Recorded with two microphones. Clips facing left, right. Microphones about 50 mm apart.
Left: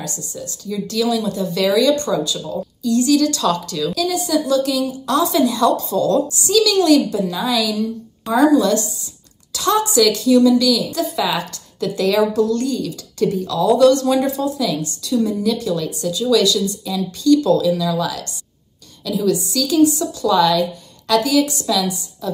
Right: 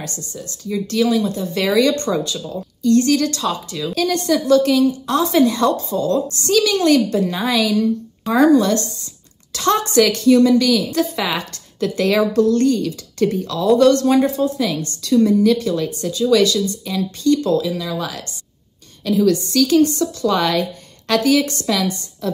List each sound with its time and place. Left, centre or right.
0.0 s a woman's voice: right
2.8 s a woman's voice: right
3.4 s speech: centre
3.9 s a woman's voice: right
6.2 s a woman's voice: right